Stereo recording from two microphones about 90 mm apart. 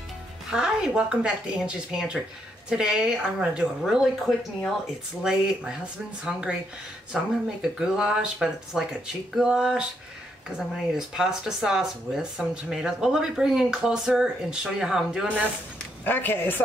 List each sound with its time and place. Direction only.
0.5 s speech: 10° right (ahead or behind)
10.9 s speech: 5° right (ahead or behind)
16.0 s a man's voice: 20° left (ahead or behind)